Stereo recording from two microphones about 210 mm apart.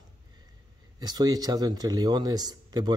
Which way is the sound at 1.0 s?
20° right (ahead or behind).